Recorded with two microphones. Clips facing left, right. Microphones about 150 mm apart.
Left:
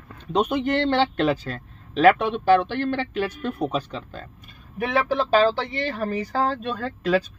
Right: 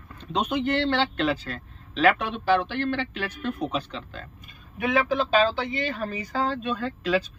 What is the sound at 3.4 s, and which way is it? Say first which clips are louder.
Speech: left 3 dB; 10° left (ahead or behind).